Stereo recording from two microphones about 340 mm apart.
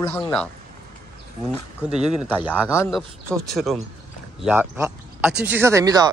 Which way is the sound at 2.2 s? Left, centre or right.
Centre.